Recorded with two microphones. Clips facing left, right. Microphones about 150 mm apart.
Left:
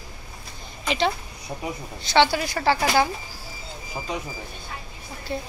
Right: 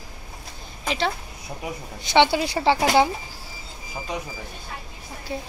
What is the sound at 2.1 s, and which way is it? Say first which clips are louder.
Speech: right 1 dB; 20° right (ahead or behind).